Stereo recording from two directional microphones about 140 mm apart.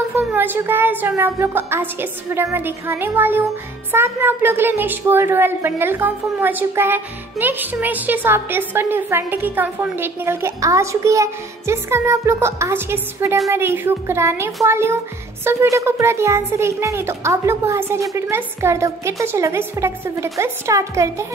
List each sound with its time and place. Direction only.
0.1 s a woman's voice: 15° right (ahead or behind)